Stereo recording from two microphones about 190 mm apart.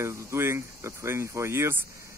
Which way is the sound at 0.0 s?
15° right (ahead or behind).